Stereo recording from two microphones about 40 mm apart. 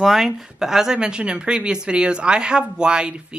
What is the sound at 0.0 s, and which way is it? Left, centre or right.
Speech, centre.